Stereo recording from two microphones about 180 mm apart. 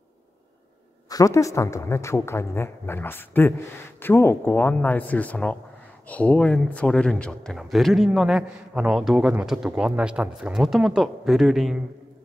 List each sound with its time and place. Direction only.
1.0 s a woman's voice: 20° left (ahead or behind); by 11.7 s centre (ahead or behind)